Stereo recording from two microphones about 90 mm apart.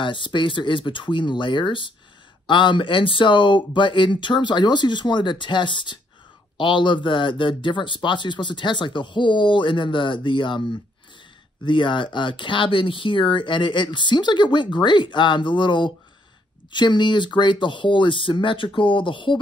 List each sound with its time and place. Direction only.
0.0 s speech: 65° left (ahead or behind)